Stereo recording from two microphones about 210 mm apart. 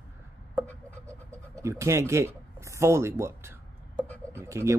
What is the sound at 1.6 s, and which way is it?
Speech, 15° right (ahead or behind).